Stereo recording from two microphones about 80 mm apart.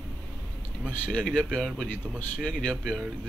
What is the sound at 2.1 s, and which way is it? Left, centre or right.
Speech, centre.